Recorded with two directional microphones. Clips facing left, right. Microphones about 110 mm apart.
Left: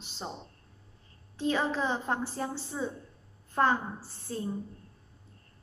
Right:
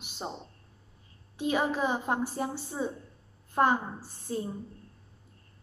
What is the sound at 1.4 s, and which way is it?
A woman's voice, 15° right (ahead or behind).